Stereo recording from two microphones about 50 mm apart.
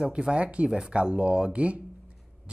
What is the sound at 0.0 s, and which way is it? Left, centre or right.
Speech, centre.